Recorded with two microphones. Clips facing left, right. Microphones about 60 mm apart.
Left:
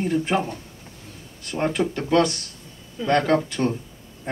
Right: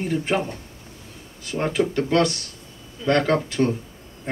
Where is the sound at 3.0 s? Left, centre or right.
Centre.